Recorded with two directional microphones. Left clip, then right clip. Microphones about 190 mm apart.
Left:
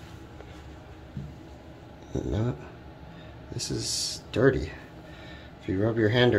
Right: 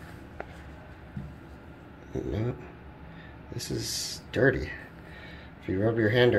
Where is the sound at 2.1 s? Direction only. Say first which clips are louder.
Left 1 dB; 45° left (ahead or behind).